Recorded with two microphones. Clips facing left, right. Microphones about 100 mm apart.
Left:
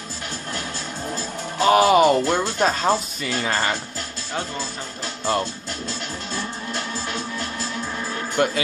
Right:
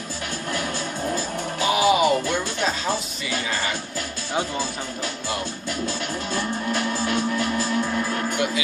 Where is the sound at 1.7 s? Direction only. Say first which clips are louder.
Left 5 dB; 50° left (ahead or behind).